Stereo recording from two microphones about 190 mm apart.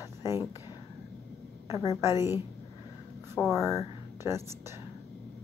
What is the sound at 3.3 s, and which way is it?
Speech, centre (ahead or behind).